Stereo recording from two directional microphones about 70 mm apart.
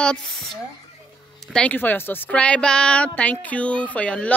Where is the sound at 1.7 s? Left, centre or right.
Left.